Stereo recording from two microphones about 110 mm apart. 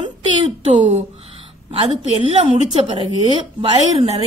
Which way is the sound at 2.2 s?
65° right (ahead or behind).